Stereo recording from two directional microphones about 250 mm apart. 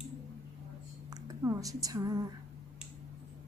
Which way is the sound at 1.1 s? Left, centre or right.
Centre.